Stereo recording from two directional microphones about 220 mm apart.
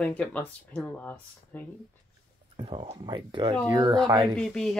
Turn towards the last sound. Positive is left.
turn(degrees=0)  # may be behind; listen again after turning